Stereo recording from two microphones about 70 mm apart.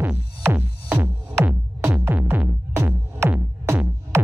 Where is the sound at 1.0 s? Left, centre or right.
Right.